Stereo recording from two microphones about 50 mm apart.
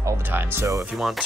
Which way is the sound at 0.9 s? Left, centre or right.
Centre.